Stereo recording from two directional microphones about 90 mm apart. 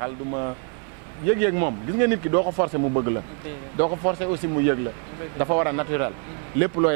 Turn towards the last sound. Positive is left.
turn(degrees=-20)  # may be behind; listen again after turning